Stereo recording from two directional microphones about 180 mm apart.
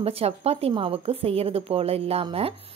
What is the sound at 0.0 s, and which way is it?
A woman's voice, 35° right (ahead or behind).